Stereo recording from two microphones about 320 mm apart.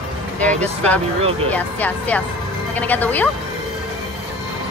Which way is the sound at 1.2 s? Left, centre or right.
Centre.